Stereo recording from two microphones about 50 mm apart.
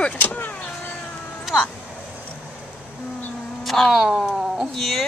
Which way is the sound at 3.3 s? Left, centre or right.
Centre.